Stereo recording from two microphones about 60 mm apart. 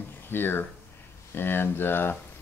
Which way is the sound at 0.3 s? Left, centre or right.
Left.